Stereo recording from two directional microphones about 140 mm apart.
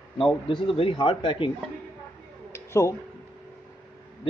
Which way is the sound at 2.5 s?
20° left (ahead or behind).